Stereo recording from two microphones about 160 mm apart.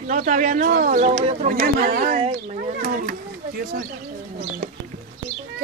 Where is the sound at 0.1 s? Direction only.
55° right (ahead or behind).